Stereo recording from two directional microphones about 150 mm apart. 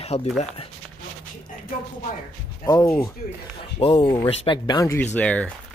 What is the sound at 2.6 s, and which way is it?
Speech, 25° left (ahead or behind).